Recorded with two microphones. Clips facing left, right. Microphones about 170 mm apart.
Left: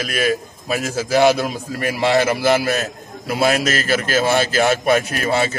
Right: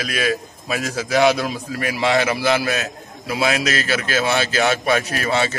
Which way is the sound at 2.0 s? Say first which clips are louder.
Left 2 dB; 40° left (ahead or behind).